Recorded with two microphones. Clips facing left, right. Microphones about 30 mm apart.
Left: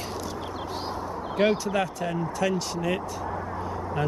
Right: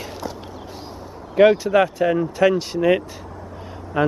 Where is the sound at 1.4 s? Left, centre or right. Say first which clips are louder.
Right 10 dB; centre.